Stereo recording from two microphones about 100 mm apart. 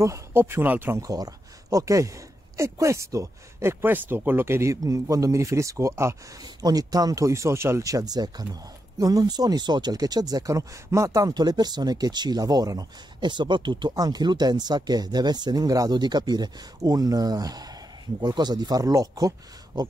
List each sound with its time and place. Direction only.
0.0 s speech: 30° right (ahead or behind)
1.0 s speech: 35° right (ahead or behind)
6.4 s speech: 40° right (ahead or behind)